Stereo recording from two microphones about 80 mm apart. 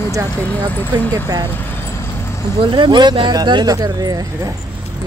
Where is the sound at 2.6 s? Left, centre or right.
Right.